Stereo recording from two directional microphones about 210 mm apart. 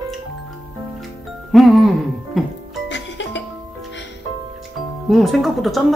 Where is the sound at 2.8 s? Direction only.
60° left (ahead or behind).